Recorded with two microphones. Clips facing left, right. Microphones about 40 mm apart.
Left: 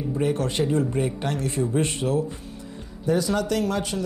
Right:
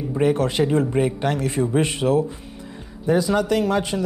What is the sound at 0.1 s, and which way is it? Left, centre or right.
Speech, right.